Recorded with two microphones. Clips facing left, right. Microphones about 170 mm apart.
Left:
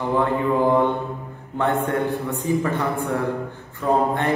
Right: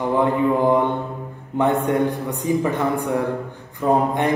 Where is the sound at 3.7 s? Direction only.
15° right (ahead or behind).